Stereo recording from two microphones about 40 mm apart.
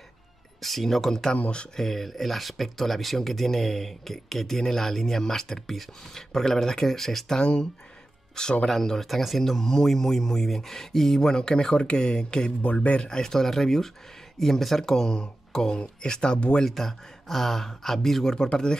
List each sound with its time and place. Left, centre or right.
0.6 s speech: centre
1.3 s speech: left
1.8 s speech: centre
7.3 s speech: left
8.6 s speech: centre
9.0 s speech: centre
9.4 s speech: centre
12.8 s speech: left
13.1 s speech: centre
16.6 s speech: centre
18.5 s speech: left